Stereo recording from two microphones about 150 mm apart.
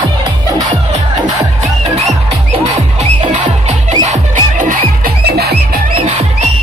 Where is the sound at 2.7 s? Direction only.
55° right (ahead or behind); by 5.5 s 80° right.